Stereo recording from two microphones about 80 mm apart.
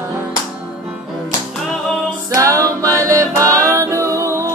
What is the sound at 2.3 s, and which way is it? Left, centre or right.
Music, right.